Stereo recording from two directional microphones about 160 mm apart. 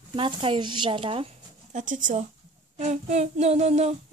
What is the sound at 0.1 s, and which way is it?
Speech, 35° right (ahead or behind).